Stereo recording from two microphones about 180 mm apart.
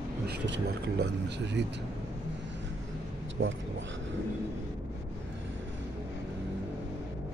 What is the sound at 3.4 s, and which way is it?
Speech, 90° right.